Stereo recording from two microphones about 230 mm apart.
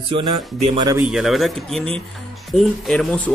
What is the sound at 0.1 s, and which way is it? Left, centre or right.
Speech, right.